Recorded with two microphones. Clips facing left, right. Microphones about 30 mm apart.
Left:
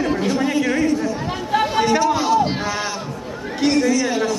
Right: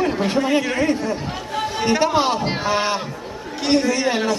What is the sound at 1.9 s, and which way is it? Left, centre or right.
Speech, right.